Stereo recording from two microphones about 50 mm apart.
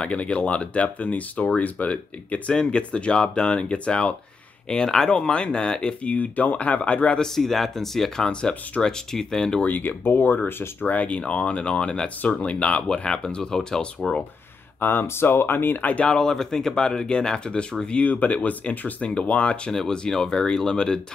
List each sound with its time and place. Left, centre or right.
0.0 s speech: left
6.0 s speech: left
7.2 s speech: centre
8.3 s speech: centre
9.7 s speech: left; by 14.2 s centre
14.8 s speech: left
16.1 s speech: centre
19.7 s speech: centre